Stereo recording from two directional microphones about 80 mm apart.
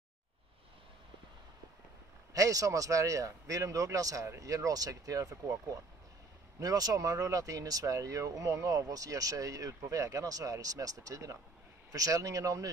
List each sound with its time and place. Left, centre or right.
2.3 s speech: right